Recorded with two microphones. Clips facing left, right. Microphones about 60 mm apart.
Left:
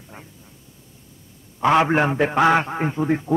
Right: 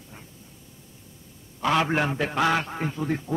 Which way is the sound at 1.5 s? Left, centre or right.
Left.